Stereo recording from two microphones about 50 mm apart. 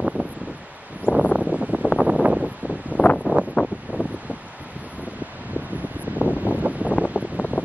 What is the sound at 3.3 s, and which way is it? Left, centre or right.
Wind, right.